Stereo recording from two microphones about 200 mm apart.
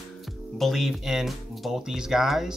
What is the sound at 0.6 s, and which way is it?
Speech, centre (ahead or behind).